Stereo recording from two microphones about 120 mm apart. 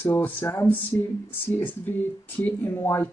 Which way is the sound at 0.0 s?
15° left (ahead or behind).